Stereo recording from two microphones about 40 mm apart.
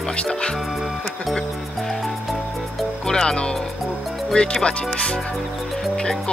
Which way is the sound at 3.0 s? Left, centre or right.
Centre.